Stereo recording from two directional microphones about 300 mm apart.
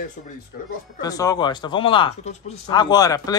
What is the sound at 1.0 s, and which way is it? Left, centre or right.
Speech, centre.